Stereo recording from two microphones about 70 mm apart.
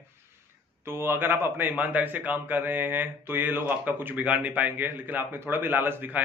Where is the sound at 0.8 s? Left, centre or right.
Right.